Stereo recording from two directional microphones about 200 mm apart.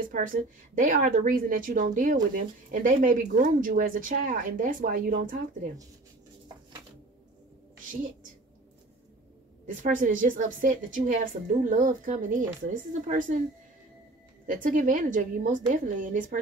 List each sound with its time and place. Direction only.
0.0 s a woman's voice: 40° right (ahead or behind)
9.7 s a woman's voice: 40° right (ahead or behind)
14.4 s a woman's voice: 40° right (ahead or behind)